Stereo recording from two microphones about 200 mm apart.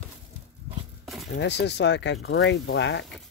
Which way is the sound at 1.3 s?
60° left (ahead or behind).